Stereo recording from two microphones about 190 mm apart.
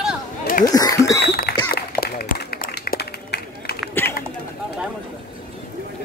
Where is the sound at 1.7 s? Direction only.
55° left (ahead or behind).